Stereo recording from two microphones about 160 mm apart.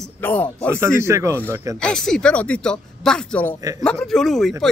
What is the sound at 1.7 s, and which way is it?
Speech, 5° left (ahead or behind).